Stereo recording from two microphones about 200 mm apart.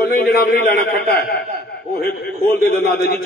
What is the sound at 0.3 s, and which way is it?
Speech, 50° left (ahead or behind).